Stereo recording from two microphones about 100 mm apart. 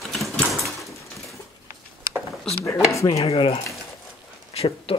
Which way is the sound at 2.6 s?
30° left (ahead or behind).